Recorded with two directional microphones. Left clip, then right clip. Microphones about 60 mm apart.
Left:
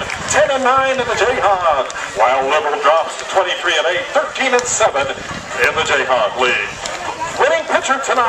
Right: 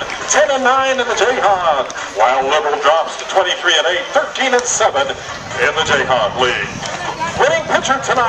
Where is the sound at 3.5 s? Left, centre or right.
Right.